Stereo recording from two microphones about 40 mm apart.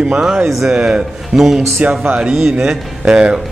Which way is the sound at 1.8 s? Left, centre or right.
Right.